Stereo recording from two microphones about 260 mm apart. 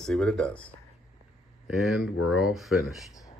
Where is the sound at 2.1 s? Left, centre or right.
Left.